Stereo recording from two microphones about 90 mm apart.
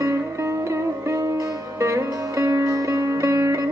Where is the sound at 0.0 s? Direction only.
35° right (ahead or behind).